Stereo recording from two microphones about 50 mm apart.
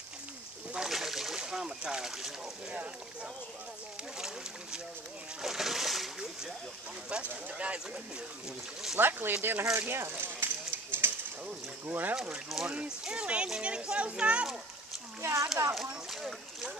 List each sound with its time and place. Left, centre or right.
0.7 s boat: centre
5.4 s speech: centre
7.1 s speech: right
8.9 s speech: right
9.8 s a sound: right
11.8 s speech: right
12.5 s speech: centre
12.8 s speech: centre
15.2 s speech: right
16.1 s rowboat: centre